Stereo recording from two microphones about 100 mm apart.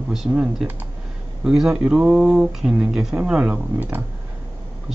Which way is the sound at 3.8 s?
20° right (ahead or behind).